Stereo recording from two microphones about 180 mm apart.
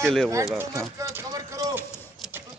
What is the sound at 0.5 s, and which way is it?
Speech, 15° right (ahead or behind).